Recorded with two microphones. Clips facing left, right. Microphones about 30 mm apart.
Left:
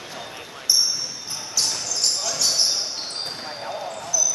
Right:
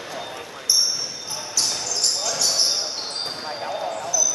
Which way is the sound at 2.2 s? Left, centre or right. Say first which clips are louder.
Right 1 dB; centre.